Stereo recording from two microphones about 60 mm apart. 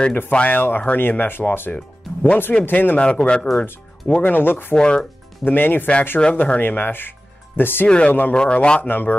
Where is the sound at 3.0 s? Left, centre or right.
Centre; by 4.7 s left.